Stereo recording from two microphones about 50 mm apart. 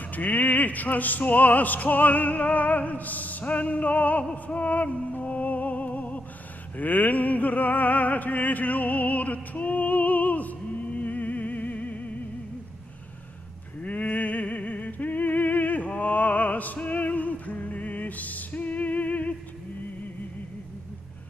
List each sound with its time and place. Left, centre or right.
0.1 s music: left
13.8 s music: left